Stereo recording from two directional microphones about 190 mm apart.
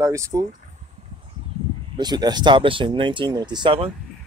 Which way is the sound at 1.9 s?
20° right (ahead or behind).